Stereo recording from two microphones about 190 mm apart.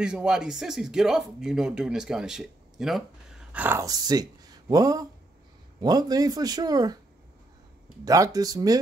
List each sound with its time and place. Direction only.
0.0 s speech: 5° right (ahead or behind); by 7.0 s 20° right (ahead or behind)
8.0 s speech: 20° right (ahead or behind)